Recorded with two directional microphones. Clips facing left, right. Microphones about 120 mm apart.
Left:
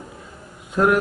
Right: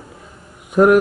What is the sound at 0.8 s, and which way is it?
Speech, 15° right (ahead or behind).